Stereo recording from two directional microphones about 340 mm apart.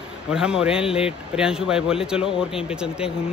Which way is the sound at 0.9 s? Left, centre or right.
Centre.